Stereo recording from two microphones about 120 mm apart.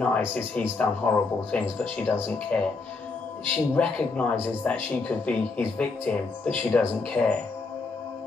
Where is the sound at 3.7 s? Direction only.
10° left (ahead or behind).